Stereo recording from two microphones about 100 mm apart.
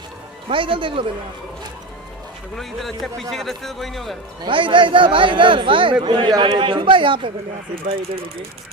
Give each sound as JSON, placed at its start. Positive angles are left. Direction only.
{"t": 0.5, "sound": "speech", "side_deg": -60}
{"t": 2.5, "sound": "a man's voice", "side_deg": 0}
{"t": 4.5, "sound": "speech", "side_deg": -60}